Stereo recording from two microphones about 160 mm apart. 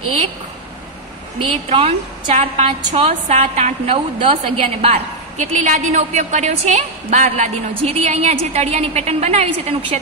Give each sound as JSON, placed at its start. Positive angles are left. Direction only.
{"t": 1.4, "sound": "a woman's voice", "side_deg": -35}